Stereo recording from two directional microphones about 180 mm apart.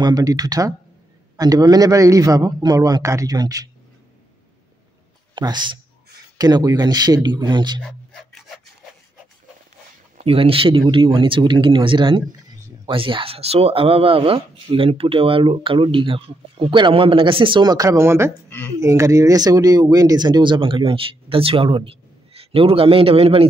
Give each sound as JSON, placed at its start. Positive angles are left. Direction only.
{"t": 0.0, "sound": "speech", "side_deg": -20}
{"t": 5.3, "sound": "speech", "side_deg": -25}
{"t": 7.8, "sound": "a sound", "side_deg": 5}
{"t": 10.2, "sound": "speech", "side_deg": -30}